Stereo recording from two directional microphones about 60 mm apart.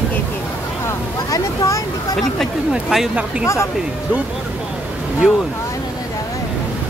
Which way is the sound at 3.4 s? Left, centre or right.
Left.